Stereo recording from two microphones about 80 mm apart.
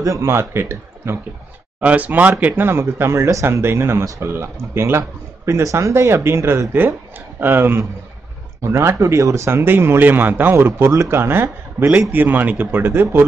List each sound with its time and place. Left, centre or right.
0.0 s speech: right
1.8 s speech: centre; by 9.7 s right
9.7 s speech: right